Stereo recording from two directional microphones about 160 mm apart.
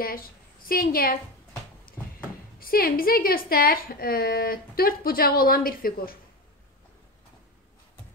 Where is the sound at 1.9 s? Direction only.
65° left (ahead or behind).